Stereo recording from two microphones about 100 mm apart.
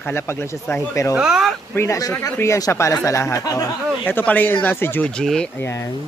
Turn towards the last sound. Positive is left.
turn(degrees=20)  # may be behind; listen again after turning